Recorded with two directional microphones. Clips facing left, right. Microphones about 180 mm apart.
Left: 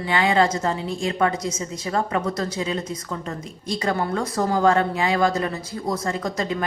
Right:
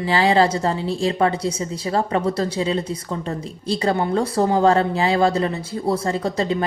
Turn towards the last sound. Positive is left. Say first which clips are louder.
# right 4 dB
turn(degrees=-30)  # may be behind; listen again after turning